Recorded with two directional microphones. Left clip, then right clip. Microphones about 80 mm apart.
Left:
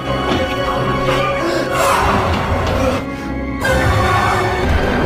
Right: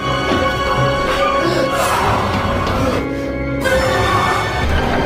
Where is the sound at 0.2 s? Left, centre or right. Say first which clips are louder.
Even; centre.